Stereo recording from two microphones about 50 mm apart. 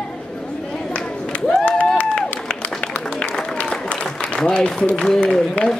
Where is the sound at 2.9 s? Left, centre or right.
Left.